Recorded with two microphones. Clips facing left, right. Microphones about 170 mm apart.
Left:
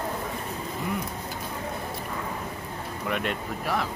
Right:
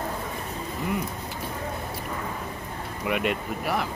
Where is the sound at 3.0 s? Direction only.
5° right (ahead or behind).